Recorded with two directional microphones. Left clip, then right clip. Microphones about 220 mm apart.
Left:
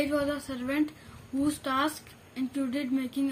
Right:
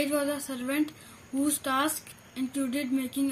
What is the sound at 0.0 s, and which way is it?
Speech, 10° right (ahead or behind).